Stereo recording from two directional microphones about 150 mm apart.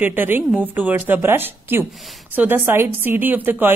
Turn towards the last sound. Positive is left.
turn(degrees=-10)  # may be behind; listen again after turning